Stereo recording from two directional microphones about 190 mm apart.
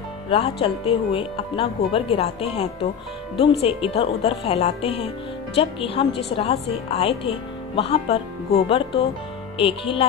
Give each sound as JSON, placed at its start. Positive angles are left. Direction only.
{"t": 0.3, "sound": "speech", "side_deg": 30}